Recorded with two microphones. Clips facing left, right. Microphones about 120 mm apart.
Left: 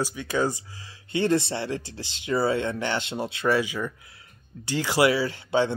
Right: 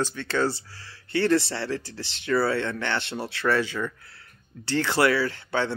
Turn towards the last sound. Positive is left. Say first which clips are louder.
# left 3 dB
turn(degrees=15)  # may be behind; listen again after turning